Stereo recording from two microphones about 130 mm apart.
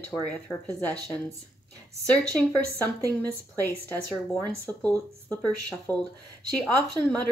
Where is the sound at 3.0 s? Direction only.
25° right (ahead or behind).